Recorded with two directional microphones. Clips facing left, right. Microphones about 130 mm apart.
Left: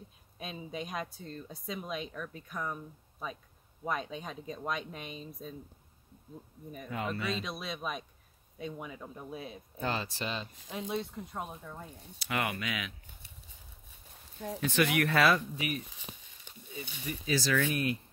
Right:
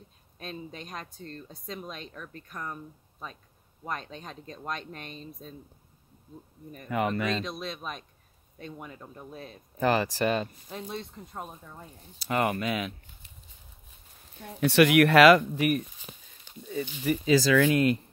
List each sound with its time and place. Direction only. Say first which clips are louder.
0.4 s speech: even; 10° left (ahead or behind)
6.9 s speech: right 7 dB; 70° right (ahead or behind)
7.4 s speech: right 2 dB; 5° left (ahead or behind)
9.8 s speech: right 10 dB; 75° right (ahead or behind); by 10.5 s 55° right (ahead or behind)
10.7 s speech: left 2 dB; 10° left (ahead or behind)
12.3 s speech: right 7 dB; 40° right (ahead or behind)
14.6 s speech: right 9 dB; 75° right (ahead or behind)